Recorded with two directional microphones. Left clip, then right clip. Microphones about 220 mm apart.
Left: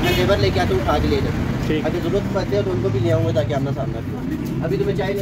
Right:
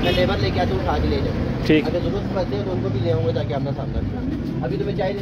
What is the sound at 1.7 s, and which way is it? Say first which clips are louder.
Speech: right 6 dB; 35° right (ahead or behind).